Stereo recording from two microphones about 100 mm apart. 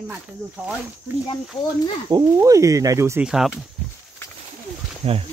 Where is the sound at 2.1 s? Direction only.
35° right (ahead or behind).